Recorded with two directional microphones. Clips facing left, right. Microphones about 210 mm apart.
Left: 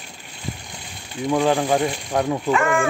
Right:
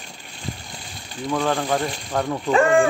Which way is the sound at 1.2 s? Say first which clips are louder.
Left 3 dB; 15° left (ahead or behind).